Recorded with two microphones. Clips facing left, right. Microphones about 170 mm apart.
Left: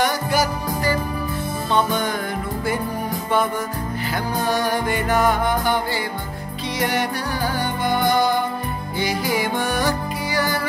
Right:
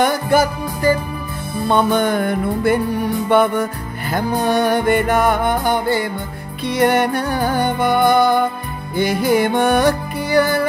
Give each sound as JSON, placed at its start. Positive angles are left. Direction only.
{"t": 0.0, "sound": "music", "side_deg": -50}